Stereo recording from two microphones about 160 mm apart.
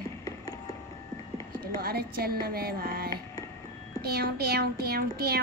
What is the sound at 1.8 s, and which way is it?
A child's voice, 70° right (ahead or behind).